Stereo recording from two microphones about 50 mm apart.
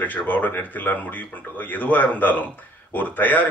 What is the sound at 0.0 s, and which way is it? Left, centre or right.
Speech, left.